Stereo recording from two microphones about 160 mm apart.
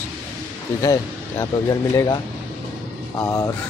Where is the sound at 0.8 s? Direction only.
20° left (ahead or behind).